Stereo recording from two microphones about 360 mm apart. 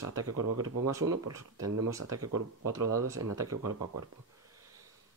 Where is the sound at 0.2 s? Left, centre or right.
Right.